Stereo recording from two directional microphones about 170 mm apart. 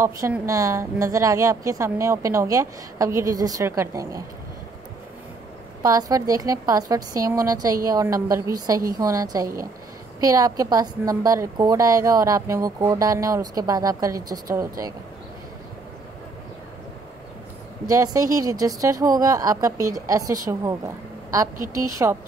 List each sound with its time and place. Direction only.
0.0 s a woman's voice: 15° right (ahead or behind)
5.8 s a woman's voice: 20° right (ahead or behind)
17.8 s a woman's voice: 20° right (ahead or behind)